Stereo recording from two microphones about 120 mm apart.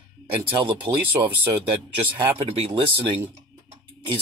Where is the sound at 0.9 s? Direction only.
20° right (ahead or behind).